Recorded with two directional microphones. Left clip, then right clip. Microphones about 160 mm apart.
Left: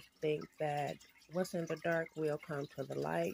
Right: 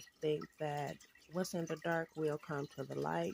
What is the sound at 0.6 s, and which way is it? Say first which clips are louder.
Speech: left 3 dB; 15° right (ahead or behind).